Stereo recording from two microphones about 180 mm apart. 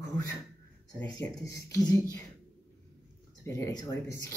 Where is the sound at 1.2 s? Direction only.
15° left (ahead or behind).